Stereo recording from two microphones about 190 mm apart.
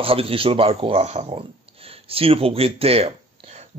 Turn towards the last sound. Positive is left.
turn(degrees=-35)  # may be behind; listen again after turning